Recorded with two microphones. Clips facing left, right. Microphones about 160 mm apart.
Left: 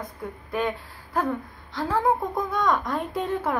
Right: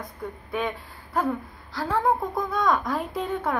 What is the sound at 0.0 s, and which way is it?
A woman's voice, centre (ahead or behind).